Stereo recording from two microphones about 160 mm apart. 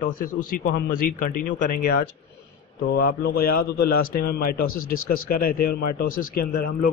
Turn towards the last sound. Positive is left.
turn(degrees=65)  # may be behind; listen again after turning